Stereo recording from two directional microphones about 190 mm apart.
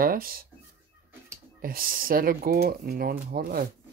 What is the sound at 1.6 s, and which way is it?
Speech, 50° right (ahead or behind).